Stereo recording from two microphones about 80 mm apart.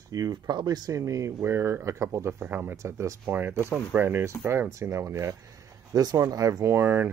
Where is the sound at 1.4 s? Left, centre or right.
Right.